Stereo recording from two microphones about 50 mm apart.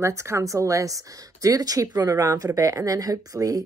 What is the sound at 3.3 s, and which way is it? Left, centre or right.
Speech, right.